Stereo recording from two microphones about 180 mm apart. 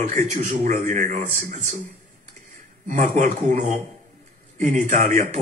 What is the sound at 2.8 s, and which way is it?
A man's voice, 40° right (ahead or behind).